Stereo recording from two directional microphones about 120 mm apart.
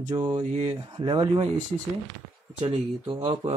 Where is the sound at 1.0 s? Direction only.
45° right (ahead or behind).